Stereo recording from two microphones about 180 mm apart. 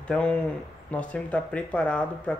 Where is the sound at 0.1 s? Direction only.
5° left (ahead or behind).